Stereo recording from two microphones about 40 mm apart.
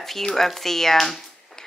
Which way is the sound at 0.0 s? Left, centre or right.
Centre.